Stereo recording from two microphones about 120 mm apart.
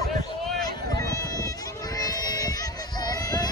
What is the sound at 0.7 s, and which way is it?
Run, 30° left (ahead or behind).